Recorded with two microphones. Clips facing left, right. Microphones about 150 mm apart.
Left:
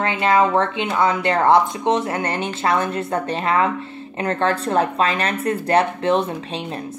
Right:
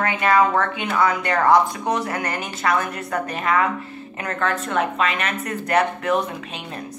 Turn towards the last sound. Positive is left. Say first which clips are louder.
# left 3 dB
turn(degrees=30)  # may be behind; listen again after turning